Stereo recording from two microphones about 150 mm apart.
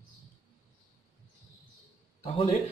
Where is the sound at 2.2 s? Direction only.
35° left (ahead or behind).